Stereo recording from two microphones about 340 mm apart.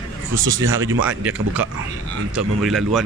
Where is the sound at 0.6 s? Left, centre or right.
Right.